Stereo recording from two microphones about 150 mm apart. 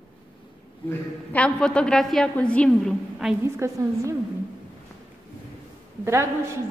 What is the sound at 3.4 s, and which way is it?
Speech, 20° right (ahead or behind).